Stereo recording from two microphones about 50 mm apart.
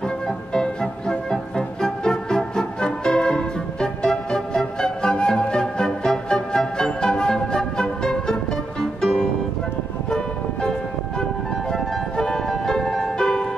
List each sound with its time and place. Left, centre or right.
0.5 s music: centre
10.1 s music: centre